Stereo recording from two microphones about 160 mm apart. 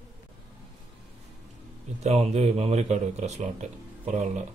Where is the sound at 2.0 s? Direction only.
40° right (ahead or behind).